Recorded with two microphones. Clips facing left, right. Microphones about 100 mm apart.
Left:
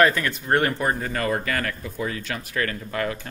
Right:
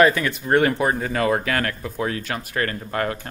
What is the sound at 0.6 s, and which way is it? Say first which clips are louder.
Speech: right 3 dB; 85° right.